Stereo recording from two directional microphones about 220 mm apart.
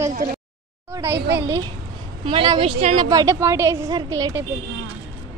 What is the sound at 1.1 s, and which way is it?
Speech, 50° right (ahead or behind).